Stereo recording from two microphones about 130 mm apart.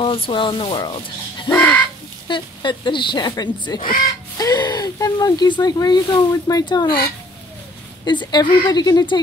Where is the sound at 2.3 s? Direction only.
35° left (ahead or behind).